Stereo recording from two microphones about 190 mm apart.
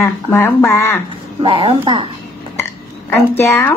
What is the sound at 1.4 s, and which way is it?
Speech, 25° right (ahead or behind).